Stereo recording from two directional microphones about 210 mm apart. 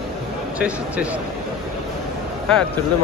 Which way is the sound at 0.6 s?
5° right (ahead or behind).